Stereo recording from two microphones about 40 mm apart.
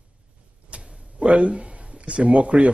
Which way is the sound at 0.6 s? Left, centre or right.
Right.